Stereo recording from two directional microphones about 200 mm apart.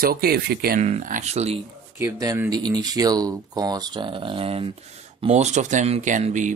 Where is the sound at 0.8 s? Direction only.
35° right (ahead or behind).